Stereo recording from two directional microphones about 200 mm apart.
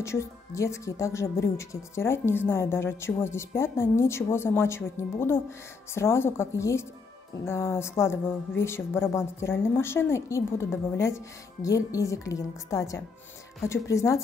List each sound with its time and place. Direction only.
0.0 s speech: 15° left (ahead or behind)